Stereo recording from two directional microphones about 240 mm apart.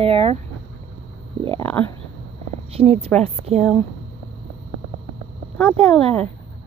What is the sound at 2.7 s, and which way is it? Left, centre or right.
Speech, right.